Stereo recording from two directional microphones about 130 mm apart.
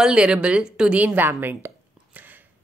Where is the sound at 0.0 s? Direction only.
5° right (ahead or behind).